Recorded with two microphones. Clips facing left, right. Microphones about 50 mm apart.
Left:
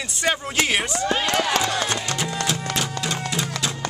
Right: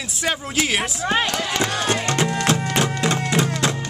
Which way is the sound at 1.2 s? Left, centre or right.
Left.